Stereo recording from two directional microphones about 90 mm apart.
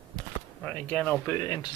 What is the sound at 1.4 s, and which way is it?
Speech, 50° left (ahead or behind).